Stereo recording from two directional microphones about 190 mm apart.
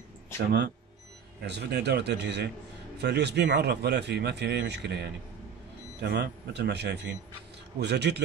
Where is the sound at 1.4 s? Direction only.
60° right (ahead or behind).